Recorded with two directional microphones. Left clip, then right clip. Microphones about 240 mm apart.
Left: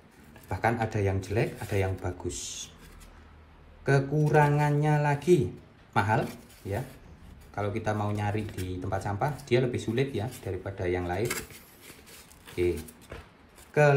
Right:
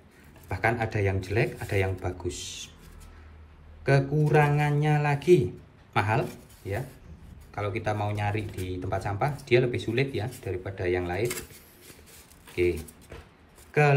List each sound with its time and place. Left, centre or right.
0.5 s speech: centre
3.8 s speech: centre
12.1 s a sound: centre